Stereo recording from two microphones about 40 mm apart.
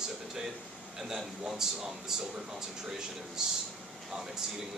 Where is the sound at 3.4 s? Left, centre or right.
Centre.